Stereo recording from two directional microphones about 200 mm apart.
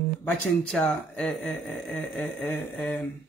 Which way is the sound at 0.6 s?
Centre (ahead or behind).